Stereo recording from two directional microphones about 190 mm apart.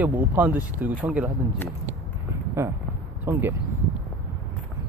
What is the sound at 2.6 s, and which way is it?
Speech, 15° right (ahead or behind).